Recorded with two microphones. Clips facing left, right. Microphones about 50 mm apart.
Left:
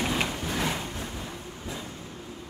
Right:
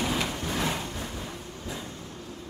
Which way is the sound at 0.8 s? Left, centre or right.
Centre.